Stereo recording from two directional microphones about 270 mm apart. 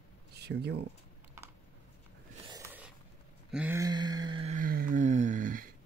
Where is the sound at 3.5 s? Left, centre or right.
Centre; by 5.7 s right.